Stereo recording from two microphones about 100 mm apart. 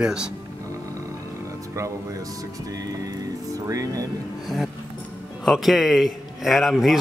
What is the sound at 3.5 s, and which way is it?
Speech, 35° right (ahead or behind).